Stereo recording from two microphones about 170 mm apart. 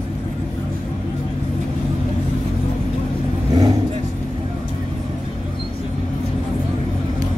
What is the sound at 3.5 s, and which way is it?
Vehicle, 20° right (ahead or behind).